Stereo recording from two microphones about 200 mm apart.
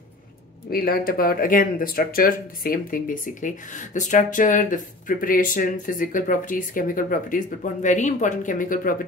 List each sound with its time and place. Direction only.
0.7 s speech: 50° left (ahead or behind)